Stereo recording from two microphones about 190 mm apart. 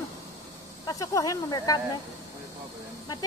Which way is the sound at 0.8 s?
20° left (ahead or behind).